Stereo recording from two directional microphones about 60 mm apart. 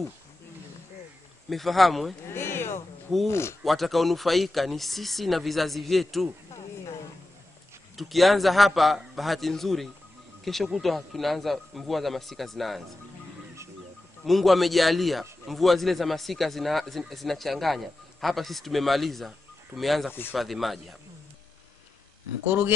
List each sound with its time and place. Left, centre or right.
1.5 s speech: centre
2.3 s a sound: left
3.3 s speech: left
3.6 s speech: centre
7.9 s speech: centre
14.2 s speech: centre
20.1 s speech: left
20.3 s speech: centre